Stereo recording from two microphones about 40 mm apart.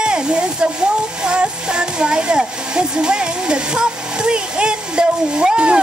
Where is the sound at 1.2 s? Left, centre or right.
Right.